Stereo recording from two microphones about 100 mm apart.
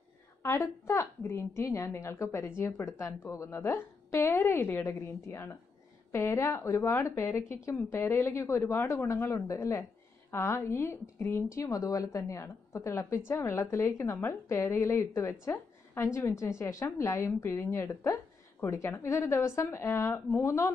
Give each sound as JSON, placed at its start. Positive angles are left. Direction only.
{"t": 0.4, "sound": "a woman's voice", "side_deg": 25}